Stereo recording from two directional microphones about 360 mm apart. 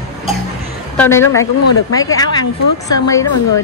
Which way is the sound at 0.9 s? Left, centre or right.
Centre.